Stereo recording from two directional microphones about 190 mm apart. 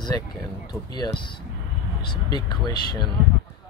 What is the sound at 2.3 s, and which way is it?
Speech, 20° left (ahead or behind).